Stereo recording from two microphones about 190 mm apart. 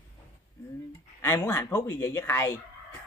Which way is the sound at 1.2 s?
10° left (ahead or behind).